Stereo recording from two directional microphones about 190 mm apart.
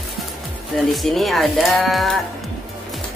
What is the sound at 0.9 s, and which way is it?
Speech, centre (ahead or behind).